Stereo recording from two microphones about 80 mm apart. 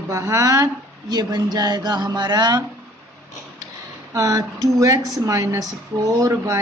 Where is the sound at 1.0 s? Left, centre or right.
Right.